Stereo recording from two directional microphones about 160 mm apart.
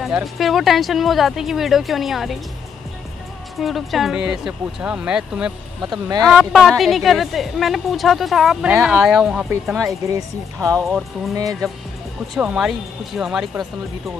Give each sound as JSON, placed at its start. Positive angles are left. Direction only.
{"t": 0.0, "sound": "a woman's voice", "side_deg": 0}
{"t": 3.5, "sound": "a woman's voice", "side_deg": 0}
{"t": 9.8, "sound": "speech", "side_deg": -20}
{"t": 12.4, "sound": "a woman's voice", "side_deg": -5}